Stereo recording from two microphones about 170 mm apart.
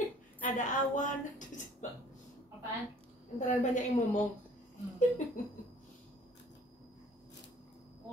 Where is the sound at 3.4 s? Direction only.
45° left (ahead or behind).